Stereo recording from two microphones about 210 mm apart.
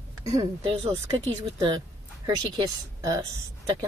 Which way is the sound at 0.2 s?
15° right (ahead or behind).